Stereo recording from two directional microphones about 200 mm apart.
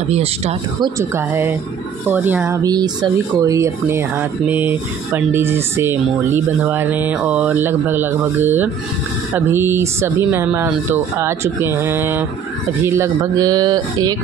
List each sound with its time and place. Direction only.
0.1 s speech: 30° right (ahead or behind)